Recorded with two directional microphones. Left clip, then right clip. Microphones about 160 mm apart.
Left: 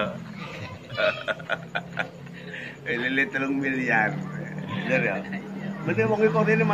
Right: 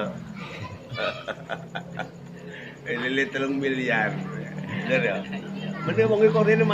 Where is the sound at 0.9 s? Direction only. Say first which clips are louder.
Left 5 dB; 10° right (ahead or behind).